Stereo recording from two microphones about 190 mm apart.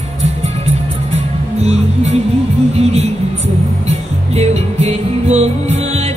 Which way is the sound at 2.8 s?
35° right (ahead or behind).